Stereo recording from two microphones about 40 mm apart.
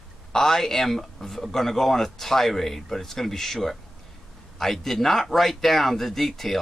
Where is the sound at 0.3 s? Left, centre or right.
Centre.